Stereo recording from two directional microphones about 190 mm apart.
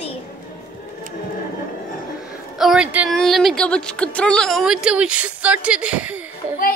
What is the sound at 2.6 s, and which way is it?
A woman's voice, 5° right (ahead or behind).